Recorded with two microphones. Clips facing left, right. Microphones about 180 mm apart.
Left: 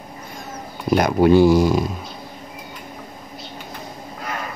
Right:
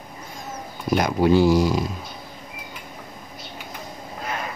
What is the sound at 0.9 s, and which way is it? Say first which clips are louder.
Speech: left 4 dB; 55° left (ahead or behind).